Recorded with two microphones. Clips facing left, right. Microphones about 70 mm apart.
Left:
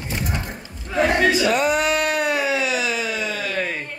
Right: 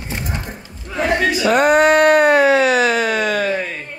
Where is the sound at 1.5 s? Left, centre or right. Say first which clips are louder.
Right 7 dB; right.